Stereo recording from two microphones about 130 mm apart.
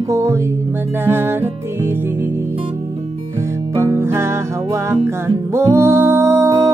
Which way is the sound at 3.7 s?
20° right (ahead or behind).